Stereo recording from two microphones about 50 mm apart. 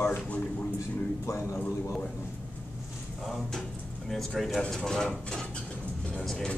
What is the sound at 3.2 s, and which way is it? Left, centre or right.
Speech, centre.